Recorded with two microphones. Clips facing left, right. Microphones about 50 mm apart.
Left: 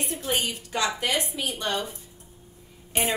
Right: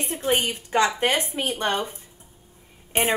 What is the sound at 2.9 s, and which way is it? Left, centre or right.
Speech, right.